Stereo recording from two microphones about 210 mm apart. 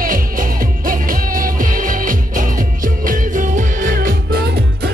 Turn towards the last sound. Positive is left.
turn(degrees=-50)  # may be behind; listen again after turning